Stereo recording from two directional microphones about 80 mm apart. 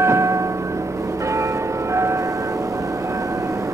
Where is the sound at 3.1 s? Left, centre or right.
Right.